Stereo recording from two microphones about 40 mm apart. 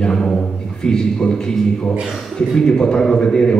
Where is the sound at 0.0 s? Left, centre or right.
Centre.